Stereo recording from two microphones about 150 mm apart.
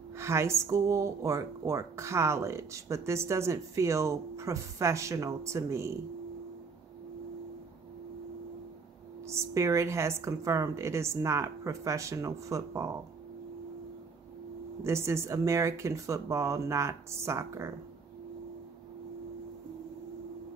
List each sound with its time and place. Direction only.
0.1 s speech: 20° right (ahead or behind)
9.2 s speech: 20° right (ahead or behind)
14.8 s speech: 20° right (ahead or behind)